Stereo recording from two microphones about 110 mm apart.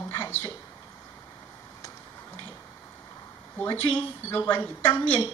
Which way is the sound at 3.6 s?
20° left (ahead or behind).